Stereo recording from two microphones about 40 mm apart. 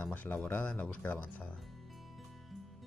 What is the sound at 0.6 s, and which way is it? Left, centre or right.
Speech, left.